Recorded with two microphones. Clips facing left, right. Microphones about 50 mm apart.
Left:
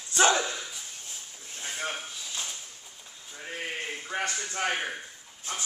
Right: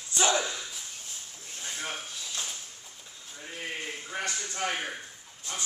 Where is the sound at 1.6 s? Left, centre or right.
Centre.